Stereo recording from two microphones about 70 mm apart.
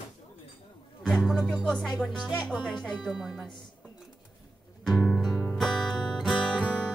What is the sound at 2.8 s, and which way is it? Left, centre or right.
Speech, centre.